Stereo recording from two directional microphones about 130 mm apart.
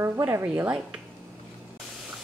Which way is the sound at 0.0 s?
20° right (ahead or behind).